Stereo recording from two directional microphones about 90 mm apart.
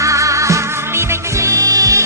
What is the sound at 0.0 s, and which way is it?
Music, 35° right (ahead or behind).